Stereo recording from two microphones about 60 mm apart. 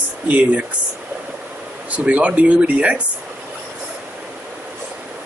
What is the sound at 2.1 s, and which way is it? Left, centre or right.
Speech, right.